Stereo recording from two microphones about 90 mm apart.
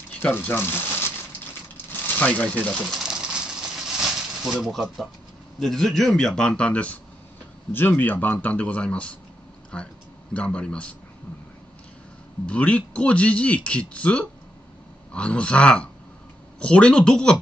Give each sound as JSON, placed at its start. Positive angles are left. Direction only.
{"t": 0.2, "sound": "speech", "side_deg": 20}
{"t": 2.9, "sound": "bird", "side_deg": -5}
{"t": 5.6, "sound": "a man's voice", "side_deg": 5}
{"t": 12.4, "sound": "a man's voice", "side_deg": 15}